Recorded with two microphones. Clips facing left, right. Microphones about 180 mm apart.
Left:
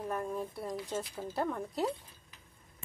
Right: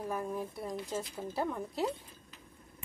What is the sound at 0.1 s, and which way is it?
A woman's voice, centre (ahead or behind).